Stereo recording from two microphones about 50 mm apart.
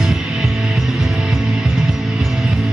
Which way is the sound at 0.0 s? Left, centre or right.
Centre.